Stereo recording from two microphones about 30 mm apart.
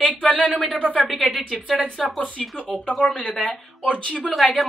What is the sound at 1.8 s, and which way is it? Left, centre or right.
Speech, right.